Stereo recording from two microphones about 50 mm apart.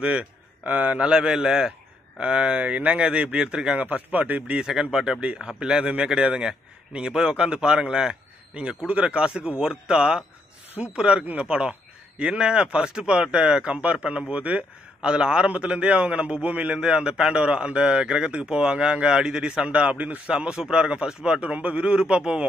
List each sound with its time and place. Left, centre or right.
0.0 s a man's voice: right
1.3 s a man's voice: centre
3.8 s a man's voice: right
4.6 s a man's voice: centre